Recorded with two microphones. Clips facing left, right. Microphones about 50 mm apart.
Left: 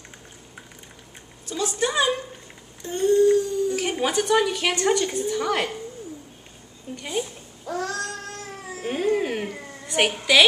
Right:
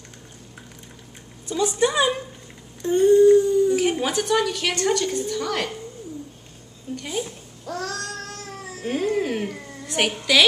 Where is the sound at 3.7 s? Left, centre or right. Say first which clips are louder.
Right 2 dB; centre.